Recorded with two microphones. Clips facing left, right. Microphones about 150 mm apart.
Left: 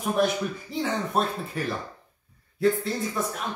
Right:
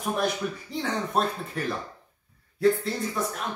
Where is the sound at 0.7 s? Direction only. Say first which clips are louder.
Left 1 dB; centre (ahead or behind).